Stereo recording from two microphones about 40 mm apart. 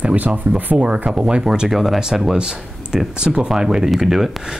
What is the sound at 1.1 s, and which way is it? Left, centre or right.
Speech, centre.